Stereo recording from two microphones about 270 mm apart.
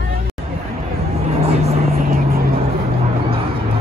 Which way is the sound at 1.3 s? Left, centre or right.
Right.